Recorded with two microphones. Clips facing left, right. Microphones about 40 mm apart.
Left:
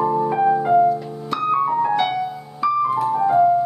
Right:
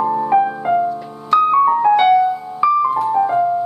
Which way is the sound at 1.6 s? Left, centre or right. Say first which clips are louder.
Right 6 dB; right.